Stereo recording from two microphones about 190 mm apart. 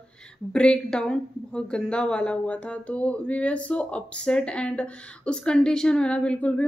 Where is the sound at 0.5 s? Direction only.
5° left (ahead or behind).